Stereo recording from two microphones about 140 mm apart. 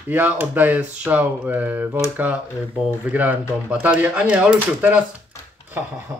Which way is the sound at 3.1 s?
10° right (ahead or behind).